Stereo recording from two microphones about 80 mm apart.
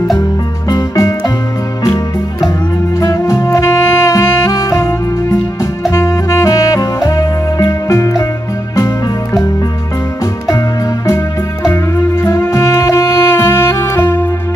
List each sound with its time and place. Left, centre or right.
0.2 s music: left
3.0 s saxophone: left
8.7 s music: left
11.7 s music: left